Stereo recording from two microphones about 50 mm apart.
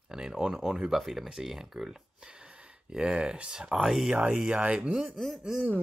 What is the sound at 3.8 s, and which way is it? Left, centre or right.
Speech, centre.